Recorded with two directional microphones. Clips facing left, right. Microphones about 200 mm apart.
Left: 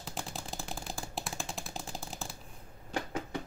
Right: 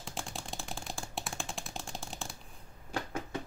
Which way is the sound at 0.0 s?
Centre (ahead or behind).